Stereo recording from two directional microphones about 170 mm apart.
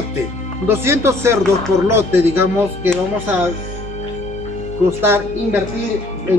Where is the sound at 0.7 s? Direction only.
15° right (ahead or behind).